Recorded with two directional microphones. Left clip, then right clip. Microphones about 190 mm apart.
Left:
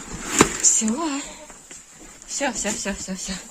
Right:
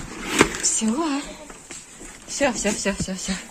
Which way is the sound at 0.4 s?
45° left (ahead or behind).